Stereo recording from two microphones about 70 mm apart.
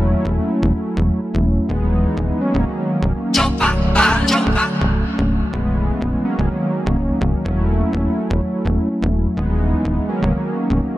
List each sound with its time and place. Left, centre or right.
3.6 s music: centre